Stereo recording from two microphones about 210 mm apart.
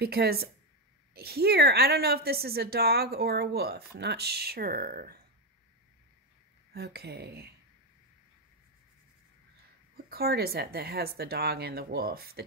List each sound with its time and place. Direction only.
0.0 s a woman's voice: 50° right (ahead or behind)
6.7 s a woman's voice: 50° right (ahead or behind)
10.0 s a woman's voice: 45° right (ahead or behind)